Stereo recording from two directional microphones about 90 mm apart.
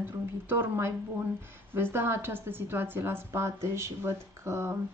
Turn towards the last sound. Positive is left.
turn(degrees=-30)  # may be behind; listen again after turning